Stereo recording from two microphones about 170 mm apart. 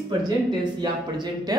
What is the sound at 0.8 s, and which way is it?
Speech, 25° right (ahead or behind).